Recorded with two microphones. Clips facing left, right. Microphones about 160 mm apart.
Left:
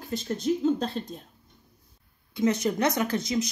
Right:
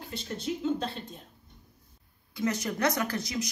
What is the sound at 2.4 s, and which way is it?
Speech, 20° left (ahead or behind).